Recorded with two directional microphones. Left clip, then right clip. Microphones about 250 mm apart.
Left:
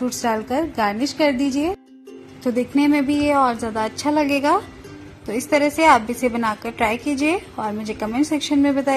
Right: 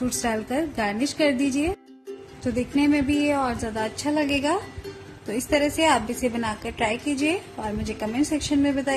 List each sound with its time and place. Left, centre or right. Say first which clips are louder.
0.2 s a woman's voice: left 6 dB; centre